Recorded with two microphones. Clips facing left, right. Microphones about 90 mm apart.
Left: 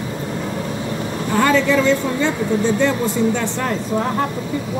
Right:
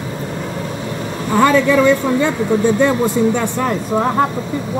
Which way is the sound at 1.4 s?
15° right (ahead or behind).